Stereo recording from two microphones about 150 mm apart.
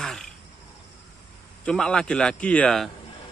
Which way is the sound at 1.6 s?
5° left (ahead or behind).